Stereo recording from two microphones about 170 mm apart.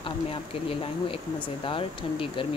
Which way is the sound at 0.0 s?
30° left (ahead or behind).